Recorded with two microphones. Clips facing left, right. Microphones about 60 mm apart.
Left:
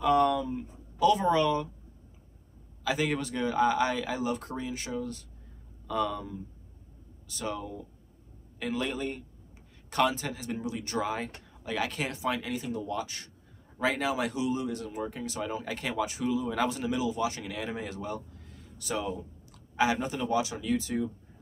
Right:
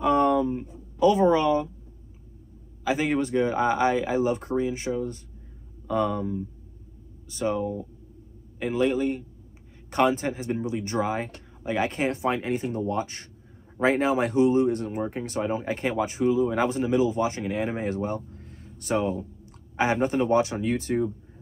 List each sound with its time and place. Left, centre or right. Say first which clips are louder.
0.0 s speech: right 3 dB; right
2.8 s a man's voice: right 5 dB; right
9.8 s speech: right 5 dB; right